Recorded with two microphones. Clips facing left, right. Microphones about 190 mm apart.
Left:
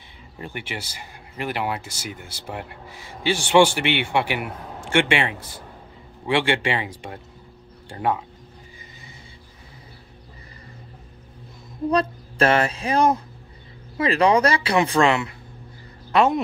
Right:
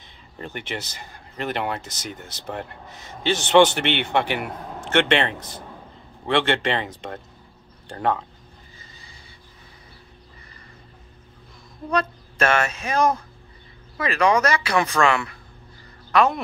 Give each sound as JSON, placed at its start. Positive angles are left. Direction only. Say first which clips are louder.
{"t": 0.4, "sound": "speech", "louder": "right 1 dB", "side_deg": 10}
{"t": 11.9, "sound": "speech", "louder": "left 2 dB", "side_deg": 30}